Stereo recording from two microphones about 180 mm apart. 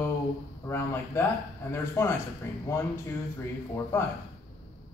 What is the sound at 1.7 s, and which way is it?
Speech, 15° left (ahead or behind).